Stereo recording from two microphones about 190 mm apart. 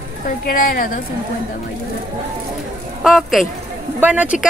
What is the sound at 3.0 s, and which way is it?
A woman's voice, centre (ahead or behind).